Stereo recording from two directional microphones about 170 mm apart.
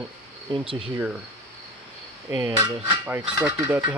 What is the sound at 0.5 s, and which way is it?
Speech, 30° right (ahead or behind).